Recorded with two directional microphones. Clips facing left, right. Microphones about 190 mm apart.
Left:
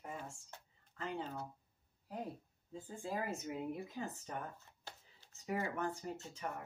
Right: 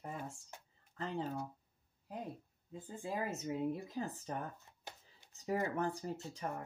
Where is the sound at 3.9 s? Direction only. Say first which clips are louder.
Right 3 dB; 35° right (ahead or behind).